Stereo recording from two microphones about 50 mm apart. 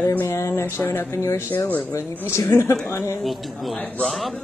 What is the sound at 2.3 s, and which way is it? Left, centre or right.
Speech, left.